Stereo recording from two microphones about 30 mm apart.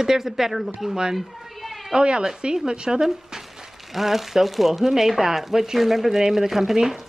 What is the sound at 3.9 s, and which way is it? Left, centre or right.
Speech, centre.